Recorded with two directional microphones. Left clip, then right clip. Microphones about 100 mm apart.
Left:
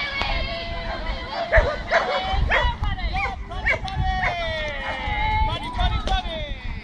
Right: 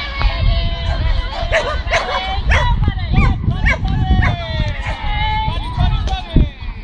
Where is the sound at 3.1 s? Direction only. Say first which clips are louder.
Right 6 dB; 40° left (ahead or behind).